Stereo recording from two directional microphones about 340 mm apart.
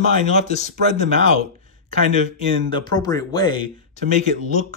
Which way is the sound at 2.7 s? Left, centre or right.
Centre.